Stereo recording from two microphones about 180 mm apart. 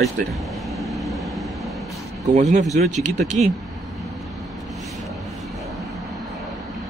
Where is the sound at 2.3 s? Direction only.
40° right (ahead or behind).